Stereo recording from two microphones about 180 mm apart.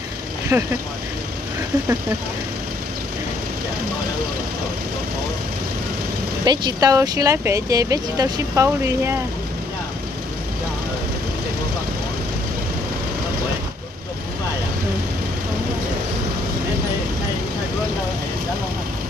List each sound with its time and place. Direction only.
0.5 s speech: 10° right (ahead or behind)
6.4 s speech: 25° right (ahead or behind)